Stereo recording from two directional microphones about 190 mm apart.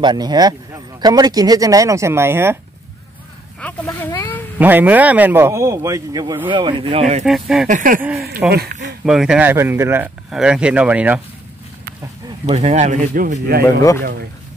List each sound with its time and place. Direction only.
0.0 s a man's voice: 20° right (ahead or behind)
3.6 s speech: 10° left (ahead or behind)
4.1 s a sound: 15° left (ahead or behind)
4.6 s a man's voice: 10° right (ahead or behind); by 7.2 s 35° right (ahead or behind)
7.2 s speech: centre (ahead or behind)
7.6 s speech: 45° right (ahead or behind)
8.4 s a man's voice: 5° right (ahead or behind)
12.5 s a man's voice: 35° right (ahead or behind)